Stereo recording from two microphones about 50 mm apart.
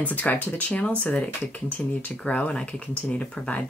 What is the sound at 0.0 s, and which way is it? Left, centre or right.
Speech, left.